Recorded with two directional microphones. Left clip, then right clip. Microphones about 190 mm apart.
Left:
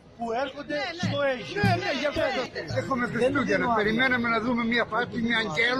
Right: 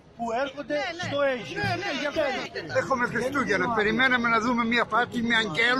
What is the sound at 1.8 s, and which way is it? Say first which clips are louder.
A man's voice: left 1 dB; 10° left (ahead or behind).